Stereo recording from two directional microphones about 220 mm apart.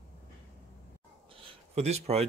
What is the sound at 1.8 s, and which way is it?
Speech, 30° right (ahead or behind).